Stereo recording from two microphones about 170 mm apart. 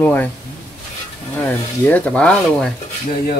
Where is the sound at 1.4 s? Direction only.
10° left (ahead or behind).